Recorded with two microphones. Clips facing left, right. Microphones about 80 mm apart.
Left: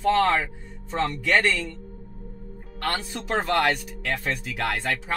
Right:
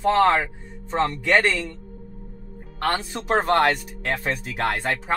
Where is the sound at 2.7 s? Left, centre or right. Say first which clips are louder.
Right 4 dB; right.